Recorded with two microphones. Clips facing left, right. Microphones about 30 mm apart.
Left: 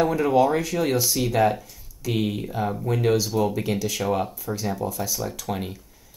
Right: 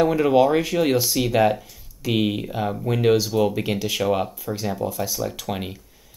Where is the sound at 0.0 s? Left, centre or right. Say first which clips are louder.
Right 2 dB; centre.